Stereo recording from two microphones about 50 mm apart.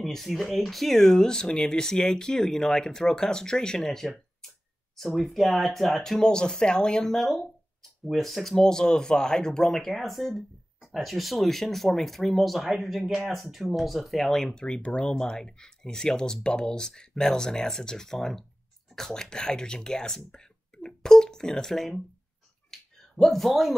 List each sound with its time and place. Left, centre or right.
0.0 s speech: centre
14.4 s speech: centre
22.7 s a sound: centre